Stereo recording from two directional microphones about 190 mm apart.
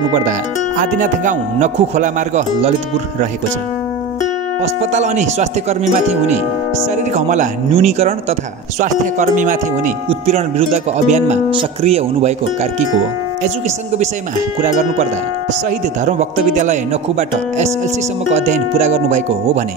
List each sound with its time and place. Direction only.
0.7 s speech: 40° right (ahead or behind)
4.6 s speech: 40° right (ahead or behind)
16.1 s speech: 40° right (ahead or behind)